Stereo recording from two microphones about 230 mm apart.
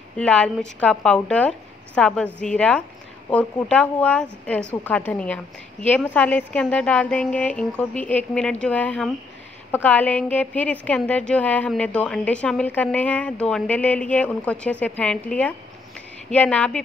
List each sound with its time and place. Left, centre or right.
0.2 s a woman's voice: centre